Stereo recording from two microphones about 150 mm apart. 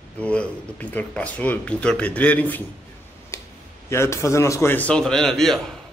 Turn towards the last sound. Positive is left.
turn(degrees=0)  # may be behind; listen again after turning